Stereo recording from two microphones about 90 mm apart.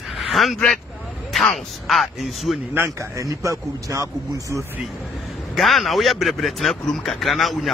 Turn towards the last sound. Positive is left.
turn(degrees=0)  # may be behind; listen again after turning